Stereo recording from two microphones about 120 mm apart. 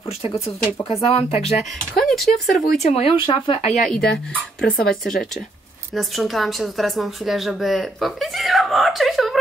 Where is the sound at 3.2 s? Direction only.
45° left (ahead or behind).